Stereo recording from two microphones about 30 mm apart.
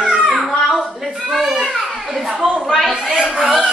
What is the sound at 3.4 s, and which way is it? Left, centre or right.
Fowl, centre.